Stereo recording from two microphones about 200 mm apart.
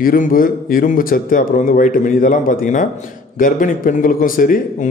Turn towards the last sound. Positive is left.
turn(degrees=45)  # may be behind; listen again after turning